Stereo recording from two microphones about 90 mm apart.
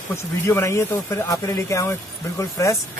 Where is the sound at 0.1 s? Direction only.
30° left (ahead or behind).